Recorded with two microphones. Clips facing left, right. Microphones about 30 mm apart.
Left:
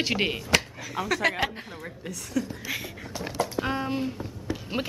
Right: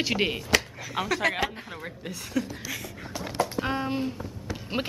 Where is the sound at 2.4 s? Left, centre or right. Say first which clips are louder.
Even; centre.